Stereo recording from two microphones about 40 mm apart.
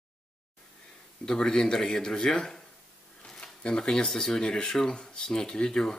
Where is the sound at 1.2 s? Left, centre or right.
Centre.